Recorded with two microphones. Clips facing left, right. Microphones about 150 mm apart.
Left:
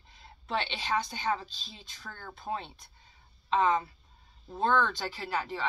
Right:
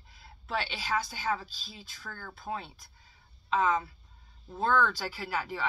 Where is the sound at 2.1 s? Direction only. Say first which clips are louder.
Even; 20° left (ahead or behind).